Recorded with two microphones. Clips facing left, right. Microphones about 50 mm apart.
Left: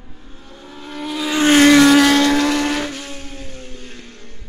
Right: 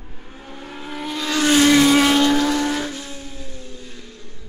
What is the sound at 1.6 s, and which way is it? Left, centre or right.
Vehicle, left.